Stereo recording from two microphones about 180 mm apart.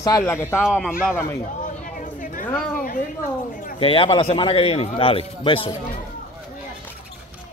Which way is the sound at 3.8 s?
30° left (ahead or behind).